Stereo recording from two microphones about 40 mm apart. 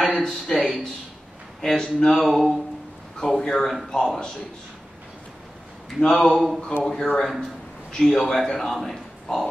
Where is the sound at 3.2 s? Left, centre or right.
Centre.